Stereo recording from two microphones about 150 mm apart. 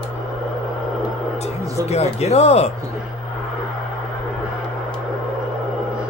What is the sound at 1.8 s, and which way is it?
Speech, 45° left (ahead or behind).